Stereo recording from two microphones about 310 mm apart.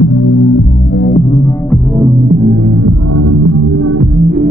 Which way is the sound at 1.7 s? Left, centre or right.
Centre.